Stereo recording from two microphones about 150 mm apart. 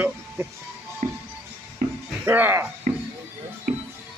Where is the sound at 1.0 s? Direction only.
55° right (ahead or behind).